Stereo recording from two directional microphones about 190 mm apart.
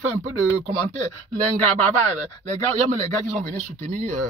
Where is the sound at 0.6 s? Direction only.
35° right (ahead or behind).